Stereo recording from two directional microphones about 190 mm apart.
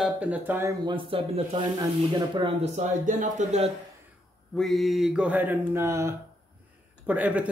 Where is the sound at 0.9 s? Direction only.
25° right (ahead or behind).